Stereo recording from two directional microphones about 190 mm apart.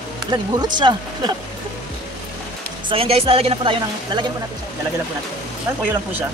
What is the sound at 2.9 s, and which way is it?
Speech, 30° right (ahead or behind).